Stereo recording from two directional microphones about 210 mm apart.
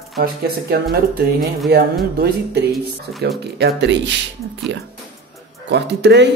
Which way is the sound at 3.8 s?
55° right (ahead or behind).